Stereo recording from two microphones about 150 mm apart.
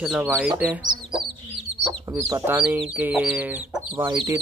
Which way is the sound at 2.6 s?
10° right (ahead or behind).